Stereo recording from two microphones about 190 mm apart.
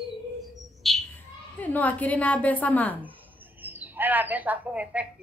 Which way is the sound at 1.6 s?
10° left (ahead or behind).